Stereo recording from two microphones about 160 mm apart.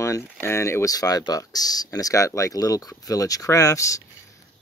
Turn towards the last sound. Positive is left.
turn(degrees=20)  # may be behind; listen again after turning